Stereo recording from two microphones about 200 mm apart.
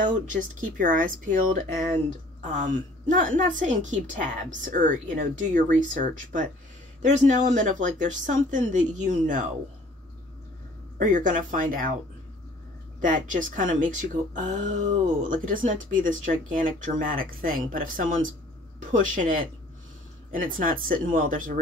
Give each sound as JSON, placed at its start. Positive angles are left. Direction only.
{"t": 0.0, "sound": "a woman's voice", "side_deg": -40}
{"t": 11.0, "sound": "a woman's voice", "side_deg": -40}
{"t": 13.0, "sound": "a woman's voice", "side_deg": -40}